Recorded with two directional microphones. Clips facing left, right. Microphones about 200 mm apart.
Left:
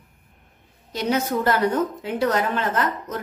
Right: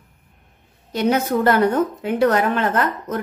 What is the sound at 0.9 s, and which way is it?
Speech, 60° right (ahead or behind).